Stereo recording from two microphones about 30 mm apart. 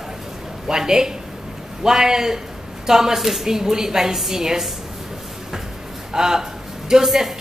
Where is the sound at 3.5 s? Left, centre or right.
Centre.